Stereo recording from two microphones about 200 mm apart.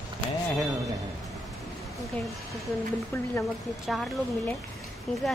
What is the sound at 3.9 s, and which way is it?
Speech, centre (ahead or behind).